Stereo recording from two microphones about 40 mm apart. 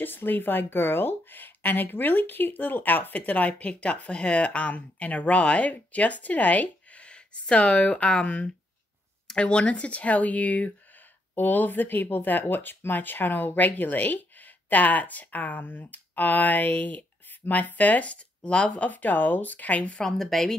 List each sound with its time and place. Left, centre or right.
0.0 s speech: left
11.3 s speech: left
20.0 s speech: centre